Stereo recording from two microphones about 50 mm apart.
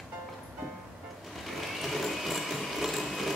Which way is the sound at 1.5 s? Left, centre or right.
Centre.